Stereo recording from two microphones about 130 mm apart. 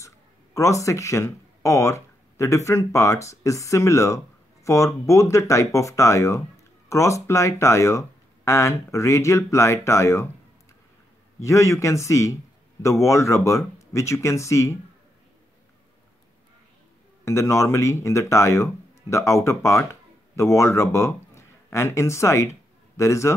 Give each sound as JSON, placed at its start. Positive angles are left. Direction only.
{"t": 0.6, "sound": "speech", "side_deg": 25}
{"t": 11.4, "sound": "speech", "side_deg": 20}
{"t": 17.2, "sound": "speech", "side_deg": 20}